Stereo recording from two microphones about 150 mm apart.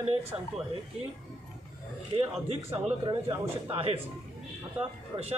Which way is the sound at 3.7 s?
40° right (ahead or behind).